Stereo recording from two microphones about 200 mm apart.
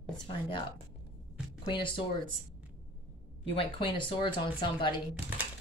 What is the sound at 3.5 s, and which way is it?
A woman's voice, 25° left (ahead or behind).